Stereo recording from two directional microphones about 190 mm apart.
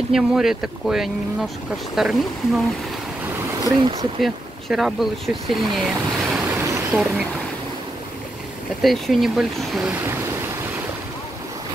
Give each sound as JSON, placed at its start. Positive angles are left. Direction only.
{"t": 0.1, "sound": "speech", "side_deg": 0}
{"t": 3.6, "sound": "speech", "side_deg": -25}
{"t": 4.2, "sound": "speech", "side_deg": 0}
{"t": 6.5, "sound": "vehicle", "side_deg": -15}
{"t": 8.8, "sound": "speech", "side_deg": 0}
{"t": 9.8, "sound": "waves", "side_deg": -10}